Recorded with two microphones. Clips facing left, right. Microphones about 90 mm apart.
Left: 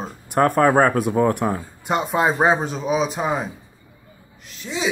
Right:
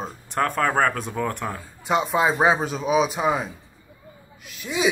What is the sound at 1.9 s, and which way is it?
A man's voice, centre (ahead or behind).